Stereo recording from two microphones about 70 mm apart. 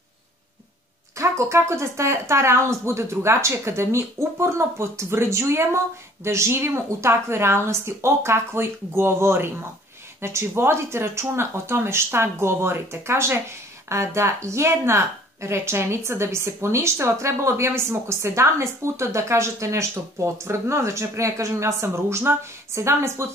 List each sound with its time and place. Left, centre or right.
1.1 s speech: right